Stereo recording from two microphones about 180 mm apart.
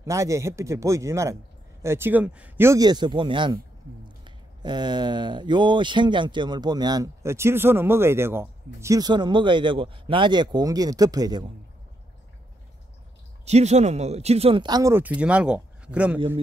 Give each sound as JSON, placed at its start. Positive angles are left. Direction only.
{"t": 0.0, "sound": "speech", "side_deg": -15}
{"t": 13.5, "sound": "speech", "side_deg": -35}